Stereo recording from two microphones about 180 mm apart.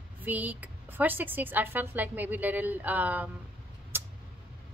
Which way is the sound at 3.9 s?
10° right (ahead or behind).